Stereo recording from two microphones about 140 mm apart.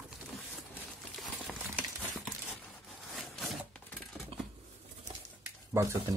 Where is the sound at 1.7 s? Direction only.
15° right (ahead or behind).